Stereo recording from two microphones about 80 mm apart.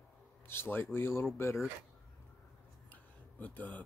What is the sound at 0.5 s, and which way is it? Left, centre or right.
Speech, left.